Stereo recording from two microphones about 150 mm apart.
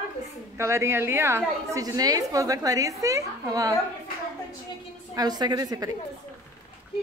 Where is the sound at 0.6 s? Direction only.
15° right (ahead or behind).